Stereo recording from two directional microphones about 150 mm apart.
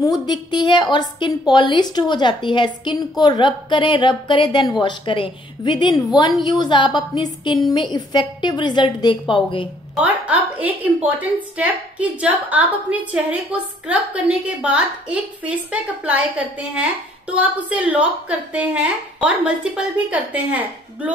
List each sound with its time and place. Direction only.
0.0 s a woman's voice: 30° left (ahead or behind)
9.9 s a woman's voice: 10° right (ahead or behind)